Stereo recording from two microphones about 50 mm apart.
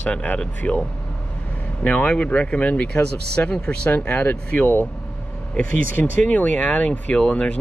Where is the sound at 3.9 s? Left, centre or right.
Left.